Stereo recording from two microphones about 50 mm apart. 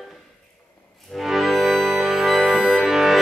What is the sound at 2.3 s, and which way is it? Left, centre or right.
Music, centre.